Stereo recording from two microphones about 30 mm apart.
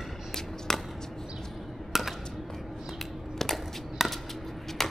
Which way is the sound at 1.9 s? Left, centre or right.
Centre.